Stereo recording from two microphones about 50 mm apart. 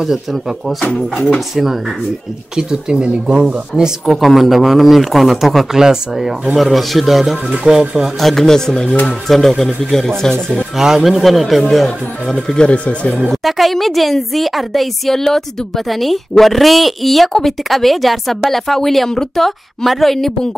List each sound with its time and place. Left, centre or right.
0.0 s a woman's voice: centre
2.5 s speech: centre
4.0 s a woman's voice: centre
7.5 s speech: centre
8.2 s a woman's voice: centre
10.8 s a woman's voice: centre
12.5 s speech: left
13.3 s a woman's voice: centre